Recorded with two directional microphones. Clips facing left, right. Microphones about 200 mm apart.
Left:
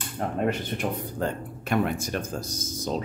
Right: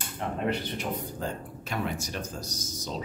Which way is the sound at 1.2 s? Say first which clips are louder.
Left 5 dB; 55° left (ahead or behind).